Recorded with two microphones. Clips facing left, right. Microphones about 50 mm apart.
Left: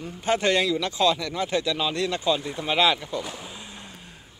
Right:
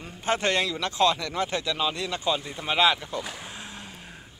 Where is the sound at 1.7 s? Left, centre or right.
Centre.